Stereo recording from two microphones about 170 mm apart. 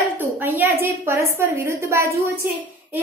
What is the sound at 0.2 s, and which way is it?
A woman's voice, 10° right (ahead or behind).